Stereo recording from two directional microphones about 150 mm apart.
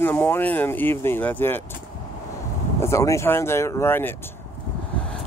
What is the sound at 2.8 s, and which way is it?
Speech, 20° left (ahead or behind).